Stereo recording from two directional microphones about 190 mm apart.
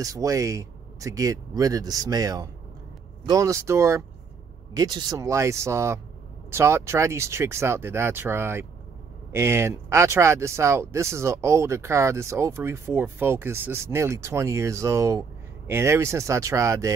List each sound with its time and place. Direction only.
0.0 s speech: 20° right (ahead or behind)